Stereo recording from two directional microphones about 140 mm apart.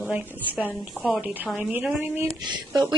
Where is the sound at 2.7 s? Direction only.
30° right (ahead or behind).